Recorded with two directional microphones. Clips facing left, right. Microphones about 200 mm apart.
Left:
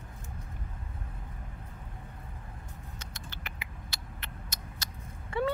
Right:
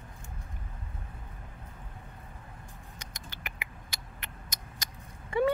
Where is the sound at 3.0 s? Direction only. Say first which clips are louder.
Left 1 dB; 15° right (ahead or behind).